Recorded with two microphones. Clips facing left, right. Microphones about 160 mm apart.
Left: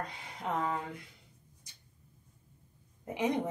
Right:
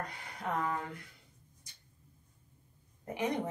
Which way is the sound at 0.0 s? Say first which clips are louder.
Left 1 dB; 20° left (ahead or behind).